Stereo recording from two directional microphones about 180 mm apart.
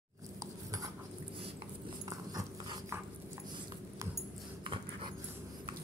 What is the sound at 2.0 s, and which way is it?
Dog, 20° right (ahead or behind).